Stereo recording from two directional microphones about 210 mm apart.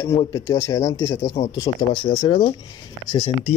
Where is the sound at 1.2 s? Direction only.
30° left (ahead or behind).